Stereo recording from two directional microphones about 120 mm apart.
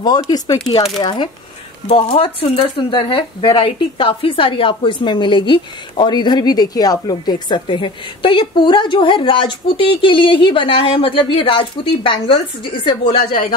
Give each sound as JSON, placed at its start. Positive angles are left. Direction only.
{"t": 0.0, "sound": "speech", "side_deg": 35}
{"t": 1.9, "sound": "speech", "side_deg": 50}